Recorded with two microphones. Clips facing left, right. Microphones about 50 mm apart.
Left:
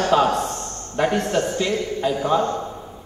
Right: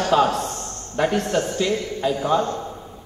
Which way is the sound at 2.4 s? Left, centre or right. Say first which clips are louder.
Left 2 dB; centre.